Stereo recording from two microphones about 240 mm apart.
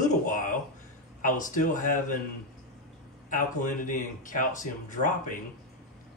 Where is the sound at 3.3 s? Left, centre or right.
Left.